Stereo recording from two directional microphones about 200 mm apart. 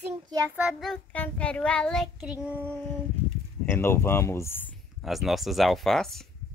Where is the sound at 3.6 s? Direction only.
10° left (ahead or behind).